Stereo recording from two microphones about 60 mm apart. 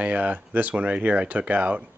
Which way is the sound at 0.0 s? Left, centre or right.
Right.